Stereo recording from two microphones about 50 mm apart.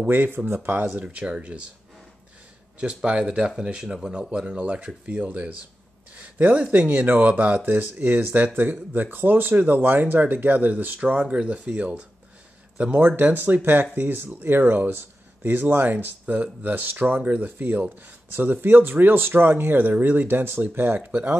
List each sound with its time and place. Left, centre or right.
0.1 s speech: right
1.0 s speech: right
2.8 s speech: right
7.7 s speech: right
11.0 s speech: right
12.9 s speech: right